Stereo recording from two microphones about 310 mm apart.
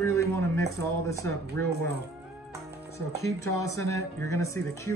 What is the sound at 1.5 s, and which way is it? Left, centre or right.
Speech, right.